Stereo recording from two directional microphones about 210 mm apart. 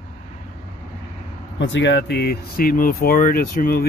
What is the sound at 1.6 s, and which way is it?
Speech, 60° left (ahead or behind).